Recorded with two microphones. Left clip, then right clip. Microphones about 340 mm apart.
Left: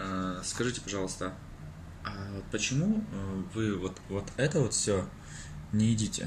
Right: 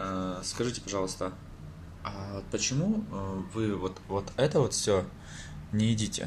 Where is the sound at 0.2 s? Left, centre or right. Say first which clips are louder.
Right 1 dB; right.